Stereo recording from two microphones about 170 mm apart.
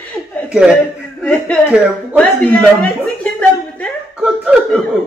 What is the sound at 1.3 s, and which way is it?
Speech, 10° left (ahead or behind).